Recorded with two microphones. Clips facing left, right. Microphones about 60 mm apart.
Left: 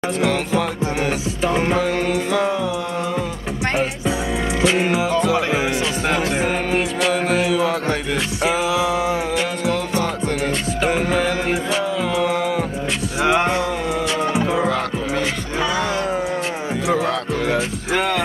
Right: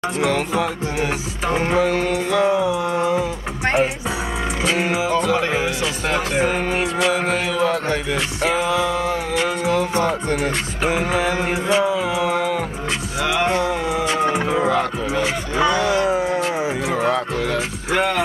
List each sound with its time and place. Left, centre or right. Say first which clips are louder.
0.5 s music: left 1 dB; centre
4.7 s music: left 1 dB; centre
8.4 s a sound: even; centre
10.4 s music: left 1 dB; centre
11.4 s music: right 2 dB; centre
13.2 s music: left 3 dB; left
13.7 s music: right 1 dB; centre
15.9 s a sound: right 3 dB; centre
17.9 s speech: right 1 dB; centre